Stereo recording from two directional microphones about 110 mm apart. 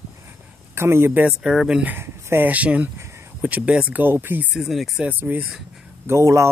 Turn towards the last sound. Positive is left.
turn(degrees=-25)  # may be behind; listen again after turning